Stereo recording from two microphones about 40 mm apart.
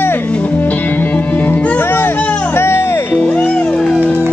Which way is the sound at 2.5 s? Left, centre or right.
Left.